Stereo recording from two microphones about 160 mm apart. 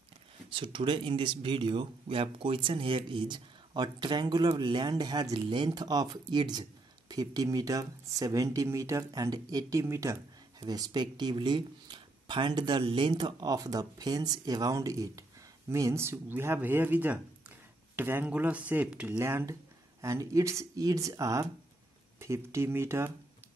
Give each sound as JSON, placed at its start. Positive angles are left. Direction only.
{"t": 0.5, "sound": "speech", "side_deg": -30}